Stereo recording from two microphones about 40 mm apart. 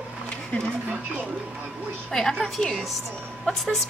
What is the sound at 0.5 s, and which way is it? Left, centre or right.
Speech, left.